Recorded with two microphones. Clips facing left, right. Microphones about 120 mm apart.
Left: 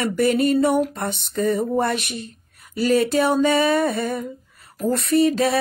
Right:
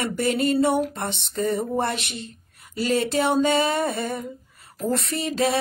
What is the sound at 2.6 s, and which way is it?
Female singing, 25° right (ahead or behind).